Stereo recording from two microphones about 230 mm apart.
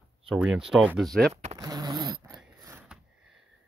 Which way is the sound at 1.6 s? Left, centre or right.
Centre.